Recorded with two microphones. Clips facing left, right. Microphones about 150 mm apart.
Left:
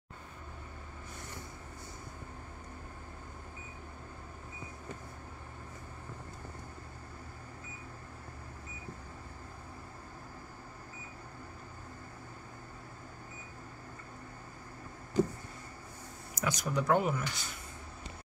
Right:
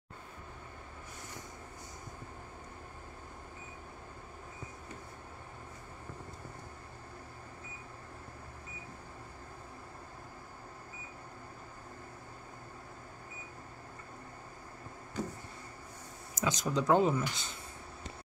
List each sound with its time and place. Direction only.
16.3 s speech: 20° right (ahead or behind)